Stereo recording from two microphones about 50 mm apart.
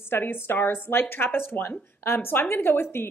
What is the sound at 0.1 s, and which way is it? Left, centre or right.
A woman's voice, left.